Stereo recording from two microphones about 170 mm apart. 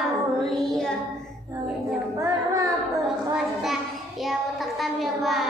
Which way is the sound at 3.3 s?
Centre (ahead or behind).